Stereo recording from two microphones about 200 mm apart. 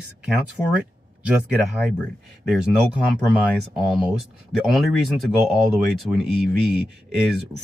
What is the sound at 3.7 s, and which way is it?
Speech, 5° right (ahead or behind).